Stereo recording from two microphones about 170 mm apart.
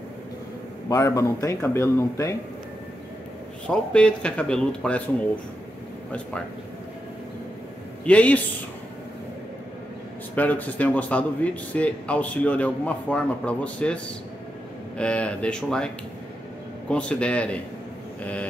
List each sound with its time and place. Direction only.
0.8 s a man's voice: 15° left (ahead or behind)
3.6 s a man's voice: 5° left (ahead or behind)
8.0 s a man's voice: 10° left (ahead or behind)
10.3 s a man's voice: 10° left (ahead or behind)
15.0 s speech: 5° left (ahead or behind)
16.9 s a man's voice: 5° left (ahead or behind)